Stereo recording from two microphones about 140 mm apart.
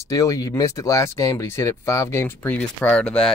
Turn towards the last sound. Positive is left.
turn(degrees=5)  # may be behind; listen again after turning